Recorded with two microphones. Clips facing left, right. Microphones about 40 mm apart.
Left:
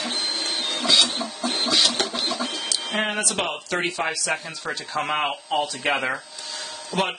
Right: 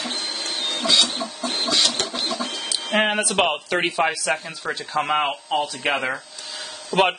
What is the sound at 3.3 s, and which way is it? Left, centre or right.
Speech, right.